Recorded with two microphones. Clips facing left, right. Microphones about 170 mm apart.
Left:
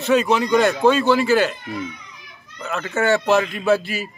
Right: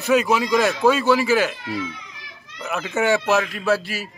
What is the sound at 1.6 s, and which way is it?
Children playing, 90° right.